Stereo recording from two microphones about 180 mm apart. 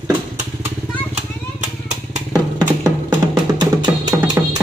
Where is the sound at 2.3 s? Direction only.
20° right (ahead or behind).